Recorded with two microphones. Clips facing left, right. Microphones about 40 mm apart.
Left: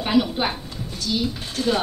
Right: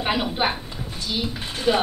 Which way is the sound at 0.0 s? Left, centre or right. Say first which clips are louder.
Left 2 dB; centre.